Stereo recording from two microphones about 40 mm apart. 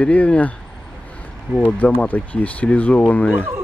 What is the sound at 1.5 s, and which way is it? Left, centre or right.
Speech, left.